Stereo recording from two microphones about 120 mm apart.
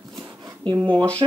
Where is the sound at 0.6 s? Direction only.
40° right (ahead or behind).